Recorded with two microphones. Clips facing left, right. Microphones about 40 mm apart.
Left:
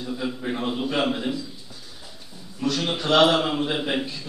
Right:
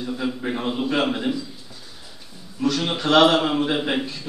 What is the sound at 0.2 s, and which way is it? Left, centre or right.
A man's voice, centre.